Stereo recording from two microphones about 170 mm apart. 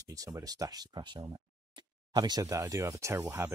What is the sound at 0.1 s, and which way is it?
Speech, 20° right (ahead or behind).